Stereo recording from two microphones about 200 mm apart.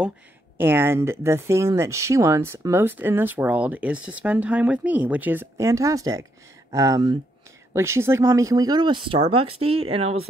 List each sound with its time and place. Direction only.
0.6 s speech: 10° right (ahead or behind); by 10.2 s 30° right (ahead or behind)